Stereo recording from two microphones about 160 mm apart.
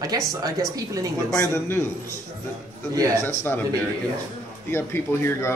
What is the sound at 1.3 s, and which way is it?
Speech, 20° left (ahead or behind).